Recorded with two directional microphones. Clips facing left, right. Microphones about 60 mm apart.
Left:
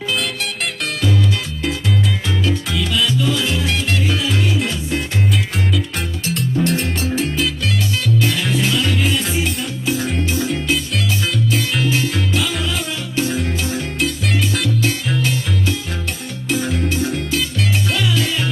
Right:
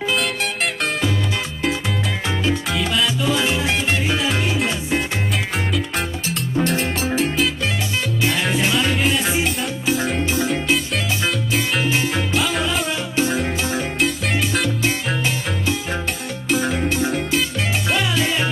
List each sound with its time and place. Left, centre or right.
0.1 s music: centre
3.2 s salsa music: right
5.9 s music: centre
7.2 s salsa music: centre
8.3 s music: centre
9.4 s music: centre
11.8 s salsa music: centre
12.4 s music: centre
16.4 s music: centre
17.9 s music: right